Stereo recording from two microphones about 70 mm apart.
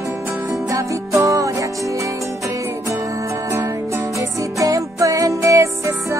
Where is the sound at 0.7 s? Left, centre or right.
Right.